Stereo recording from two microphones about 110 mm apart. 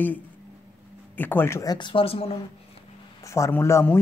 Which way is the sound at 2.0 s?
65° left (ahead or behind).